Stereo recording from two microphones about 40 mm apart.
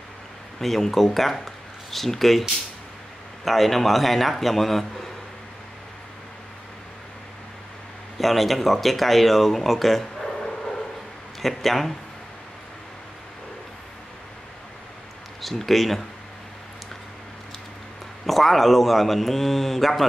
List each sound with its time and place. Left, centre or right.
0.6 s speech: centre
8.2 s speech: centre
11.4 s speech: centre
15.4 s speech: centre
18.2 s speech: centre